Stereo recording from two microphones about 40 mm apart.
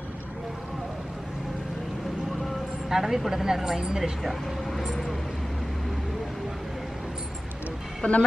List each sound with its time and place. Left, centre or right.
2.9 s a woman's voice: centre
4.2 s speech: centre
8.0 s speech: left